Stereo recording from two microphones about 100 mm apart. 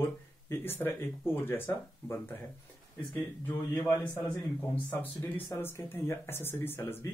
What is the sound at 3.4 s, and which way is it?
Speech, 15° left (ahead or behind).